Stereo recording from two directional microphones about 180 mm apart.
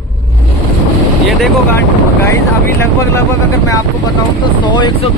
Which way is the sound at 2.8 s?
15° left (ahead or behind).